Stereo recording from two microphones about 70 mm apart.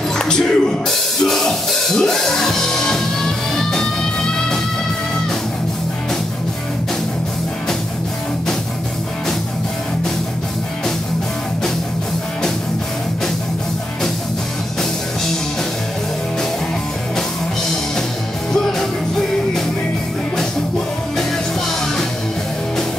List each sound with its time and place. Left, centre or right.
0.1 s music: centre
18.5 s music: centre